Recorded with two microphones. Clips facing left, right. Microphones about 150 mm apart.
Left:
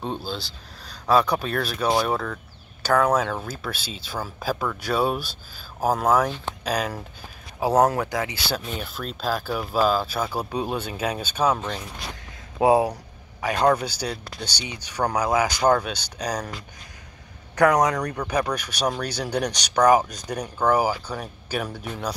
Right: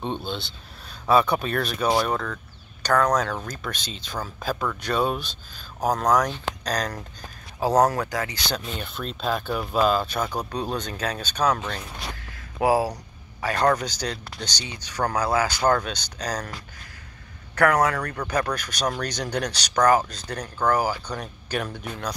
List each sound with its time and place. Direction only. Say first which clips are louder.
0.0 s speech: even; 5° left (ahead or behind)
12.5 s speech: left 3 dB; 20° left (ahead or behind)
13.4 s speech: left 1 dB; 10° left (ahead or behind)
17.6 s speech: left 2 dB; 15° left (ahead or behind)